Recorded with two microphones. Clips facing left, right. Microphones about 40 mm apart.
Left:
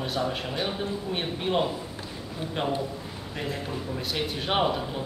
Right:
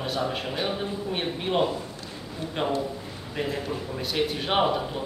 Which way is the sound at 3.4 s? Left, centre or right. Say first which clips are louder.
Right 3 dB; centre.